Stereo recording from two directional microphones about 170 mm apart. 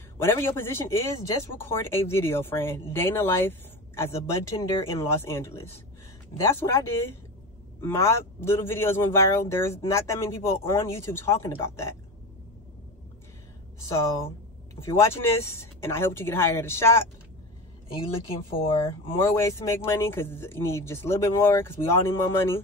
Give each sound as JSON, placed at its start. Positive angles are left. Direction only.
{"t": 0.2, "sound": "a man's voice", "side_deg": 15}
{"t": 14.9, "sound": "a man's voice", "side_deg": 15}
{"t": 17.9, "sound": "speech", "side_deg": 30}
{"t": 19.1, "sound": "a man's voice", "side_deg": 15}